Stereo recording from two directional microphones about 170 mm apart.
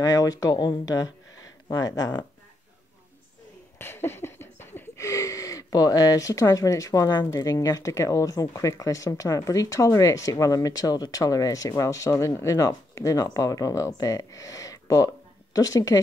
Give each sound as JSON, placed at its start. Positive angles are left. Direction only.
{"t": 0.0, "sound": "wheeze", "side_deg": 20}
{"t": 3.7, "sound": "wheeze", "side_deg": 15}